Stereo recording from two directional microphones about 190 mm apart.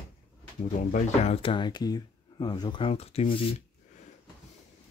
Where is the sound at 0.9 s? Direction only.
35° left (ahead or behind).